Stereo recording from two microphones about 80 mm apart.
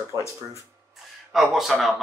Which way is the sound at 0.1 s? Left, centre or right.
Right.